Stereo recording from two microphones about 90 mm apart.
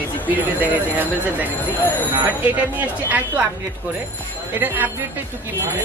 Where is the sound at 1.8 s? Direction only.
20° left (ahead or behind).